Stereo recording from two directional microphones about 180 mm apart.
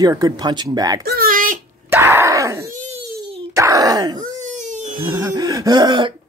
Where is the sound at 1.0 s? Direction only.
55° right (ahead or behind).